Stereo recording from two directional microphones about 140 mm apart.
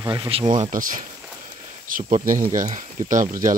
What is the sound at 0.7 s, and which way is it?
Speech, 75° right (ahead or behind).